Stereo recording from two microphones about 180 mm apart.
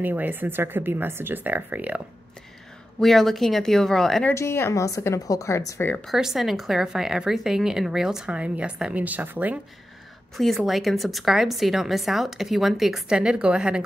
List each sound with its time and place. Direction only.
0.0 s speech: 10° right (ahead or behind)
3.0 s a woman's voice: centre (ahead or behind)
4.3 s speech: 15° left (ahead or behind)
6.0 s a woman's voice: centre (ahead or behind)
10.3 s a woman's voice: centre (ahead or behind)